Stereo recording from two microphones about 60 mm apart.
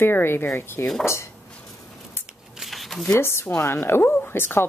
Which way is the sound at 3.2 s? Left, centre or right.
Left.